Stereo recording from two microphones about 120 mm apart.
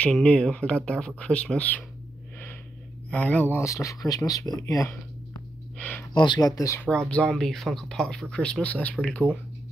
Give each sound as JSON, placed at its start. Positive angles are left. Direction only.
{"t": 0.0, "sound": "speech", "side_deg": 10}
{"t": 3.1, "sound": "speech", "side_deg": 10}
{"t": 5.8, "sound": "speech", "side_deg": 10}
{"t": 6.1, "sound": "speech", "side_deg": 40}
{"t": 7.1, "sound": "speech", "side_deg": 5}